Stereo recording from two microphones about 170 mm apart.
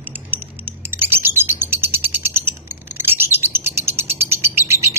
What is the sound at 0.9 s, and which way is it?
Bird, 15° right (ahead or behind).